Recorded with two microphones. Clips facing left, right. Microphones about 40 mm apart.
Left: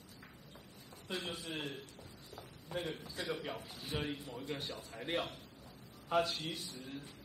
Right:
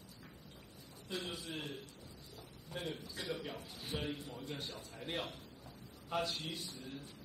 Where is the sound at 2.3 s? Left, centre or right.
Left.